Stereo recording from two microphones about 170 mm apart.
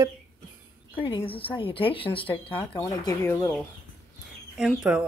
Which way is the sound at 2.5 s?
15° left (ahead or behind).